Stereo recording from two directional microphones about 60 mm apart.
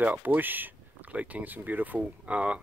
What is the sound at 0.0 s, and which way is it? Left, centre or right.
Speech, right.